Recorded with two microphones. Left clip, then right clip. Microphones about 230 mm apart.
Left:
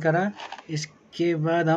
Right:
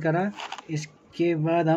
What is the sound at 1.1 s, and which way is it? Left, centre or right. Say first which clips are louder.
Speech: even; centre.